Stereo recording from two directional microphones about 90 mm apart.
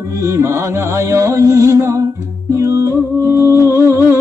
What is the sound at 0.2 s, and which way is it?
Music, 35° right (ahead or behind).